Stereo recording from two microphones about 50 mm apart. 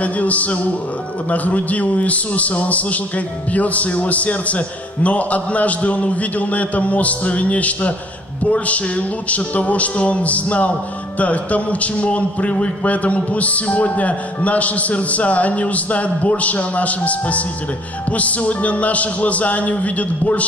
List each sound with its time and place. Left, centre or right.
0.0 s speech: left